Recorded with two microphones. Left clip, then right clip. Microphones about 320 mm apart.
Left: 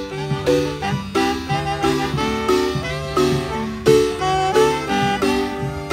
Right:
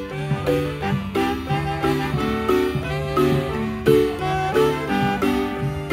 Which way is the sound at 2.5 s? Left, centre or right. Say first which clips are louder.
Left 2 dB; centre.